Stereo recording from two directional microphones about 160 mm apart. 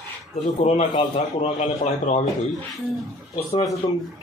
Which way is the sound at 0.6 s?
40° left (ahead or behind).